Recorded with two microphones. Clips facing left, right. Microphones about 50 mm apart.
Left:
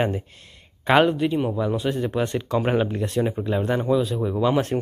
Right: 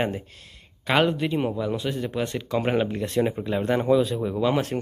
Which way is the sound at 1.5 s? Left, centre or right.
Centre.